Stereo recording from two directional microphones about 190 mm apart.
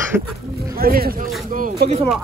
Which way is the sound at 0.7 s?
50° right (ahead or behind).